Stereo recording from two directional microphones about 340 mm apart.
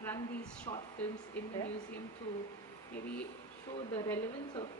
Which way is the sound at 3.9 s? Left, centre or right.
Centre.